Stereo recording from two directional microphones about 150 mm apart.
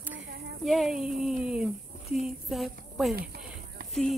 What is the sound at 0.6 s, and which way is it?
A woman's voice, centre (ahead or behind).